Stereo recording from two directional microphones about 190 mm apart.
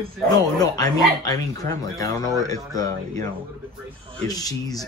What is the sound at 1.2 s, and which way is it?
Speech, 20° left (ahead or behind).